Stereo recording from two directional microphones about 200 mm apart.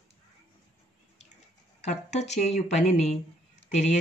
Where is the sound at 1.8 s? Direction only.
35° left (ahead or behind).